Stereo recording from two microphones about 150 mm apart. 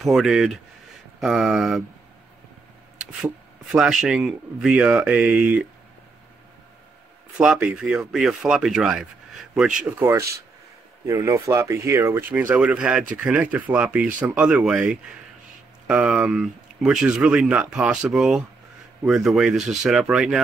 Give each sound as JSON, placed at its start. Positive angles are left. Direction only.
{"t": 0.0, "sound": "speech", "side_deg": -5}
{"t": 3.7, "sound": "speech", "side_deg": -5}
{"t": 7.3, "sound": "speech", "side_deg": -5}